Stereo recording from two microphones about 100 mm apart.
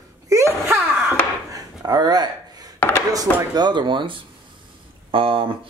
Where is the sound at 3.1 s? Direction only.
45° right (ahead or behind).